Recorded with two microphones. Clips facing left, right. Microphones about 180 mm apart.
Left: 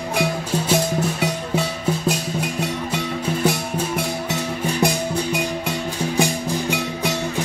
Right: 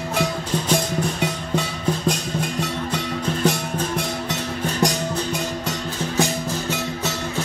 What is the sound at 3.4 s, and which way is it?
Music, 10° left (ahead or behind).